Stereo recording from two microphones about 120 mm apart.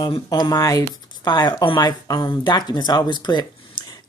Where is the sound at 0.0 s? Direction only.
35° left (ahead or behind).